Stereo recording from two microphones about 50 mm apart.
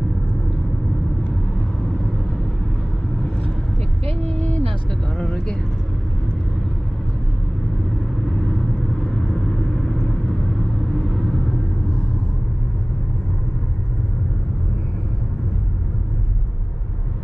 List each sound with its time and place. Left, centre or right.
4.3 s vehicle: left
9.0 s vehicle: centre